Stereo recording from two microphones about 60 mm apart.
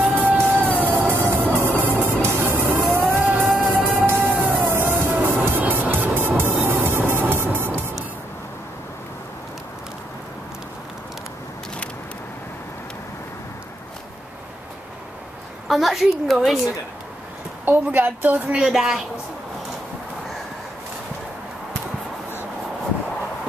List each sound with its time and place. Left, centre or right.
0.4 s music: right
4.0 s music: right
4.3 s music: right
4.7 s music: right
15.7 s a woman's voice: centre
17.6 s speech: right
18.7 s a woman's voice: centre